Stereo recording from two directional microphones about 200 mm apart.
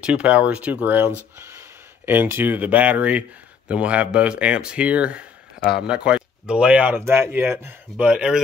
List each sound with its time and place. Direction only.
0.0 s speech: 5° right (ahead or behind)